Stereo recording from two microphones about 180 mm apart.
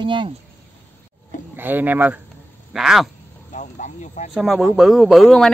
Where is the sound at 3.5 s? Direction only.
45° left (ahead or behind).